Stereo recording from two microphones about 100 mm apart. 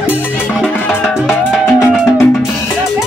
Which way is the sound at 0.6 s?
10° left (ahead or behind).